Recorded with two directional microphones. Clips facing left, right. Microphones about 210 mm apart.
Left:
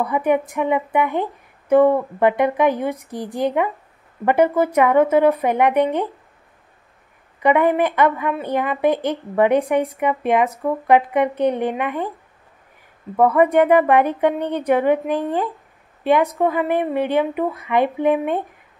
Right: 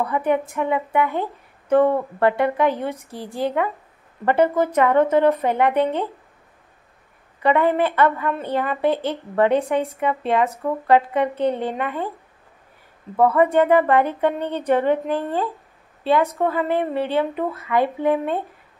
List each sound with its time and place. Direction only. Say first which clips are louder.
0.0 s speech: left 2 dB; 15° left (ahead or behind)
7.4 s speech: left 2 dB; 15° left (ahead or behind)
13.1 s speech: left 2 dB; 15° left (ahead or behind)